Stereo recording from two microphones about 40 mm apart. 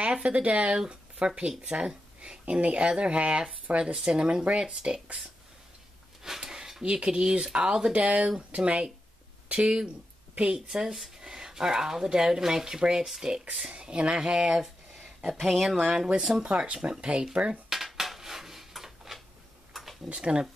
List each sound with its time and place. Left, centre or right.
0.0 s speech: right
6.2 s speech: centre
13.7 s speech: right
15.3 s speech: centre
16.2 s speech: centre
16.4 s speech: right
17.6 s dishes: centre
19.7 s a sound: centre
20.1 s speech: right